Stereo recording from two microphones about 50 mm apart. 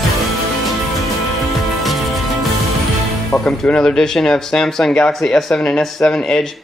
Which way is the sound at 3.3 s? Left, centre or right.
Centre.